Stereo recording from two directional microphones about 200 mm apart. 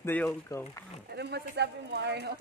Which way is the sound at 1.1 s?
55° right (ahead or behind).